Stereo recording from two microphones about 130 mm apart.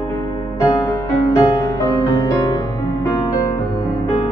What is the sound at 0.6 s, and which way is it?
Music, 30° left (ahead or behind).